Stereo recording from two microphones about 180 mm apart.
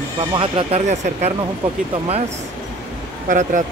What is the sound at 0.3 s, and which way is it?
Speech, 30° right (ahead or behind).